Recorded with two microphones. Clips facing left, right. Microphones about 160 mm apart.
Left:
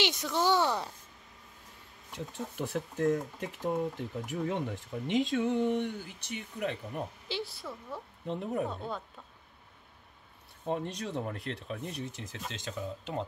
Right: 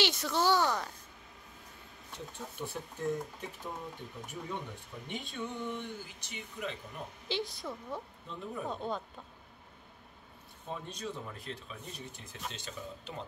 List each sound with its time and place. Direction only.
0.0 s speech: 15° left (ahead or behind)
2.1 s speech: 90° left; by 6.8 s 65° left (ahead or behind)
7.2 s a woman's voice: 5° left (ahead or behind)
8.3 s speech: 70° left (ahead or behind)
8.6 s a woman's voice: 5° left (ahead or behind)
10.7 s speech: 70° left (ahead or behind); by 13.2 s 90° left